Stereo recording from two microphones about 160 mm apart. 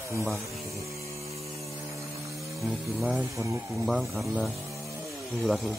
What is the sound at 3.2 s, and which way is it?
Speech, 20° right (ahead or behind).